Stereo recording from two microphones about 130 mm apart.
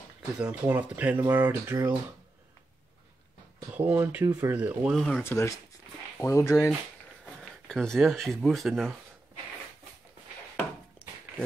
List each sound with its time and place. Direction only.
0.4 s speech: 10° right (ahead or behind)
3.7 s speech: 15° right (ahead or behind)
4.9 s speech: centre (ahead or behind)
5.2 s speech: 20° left (ahead or behind)
7.6 s speech: 5° left (ahead or behind)